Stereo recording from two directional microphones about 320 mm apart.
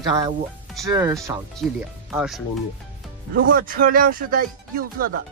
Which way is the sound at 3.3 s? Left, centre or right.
Right.